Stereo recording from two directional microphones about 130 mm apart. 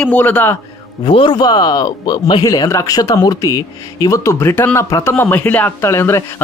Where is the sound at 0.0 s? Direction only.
10° left (ahead or behind).